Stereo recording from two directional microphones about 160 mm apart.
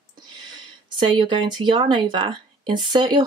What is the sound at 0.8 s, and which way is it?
Speech, 30° right (ahead or behind).